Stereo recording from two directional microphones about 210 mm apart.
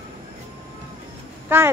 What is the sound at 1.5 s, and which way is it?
Speech, 10° right (ahead or behind).